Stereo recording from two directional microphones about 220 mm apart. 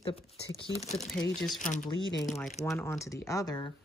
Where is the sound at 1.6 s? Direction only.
35° left (ahead or behind).